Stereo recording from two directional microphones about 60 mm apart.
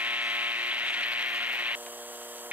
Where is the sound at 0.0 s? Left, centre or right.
Right.